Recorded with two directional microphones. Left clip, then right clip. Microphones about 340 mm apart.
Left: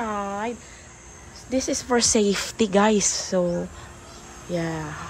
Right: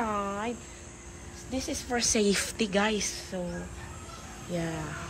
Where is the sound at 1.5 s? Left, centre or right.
Centre.